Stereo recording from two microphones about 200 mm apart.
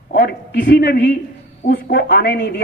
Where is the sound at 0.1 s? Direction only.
50° left (ahead or behind).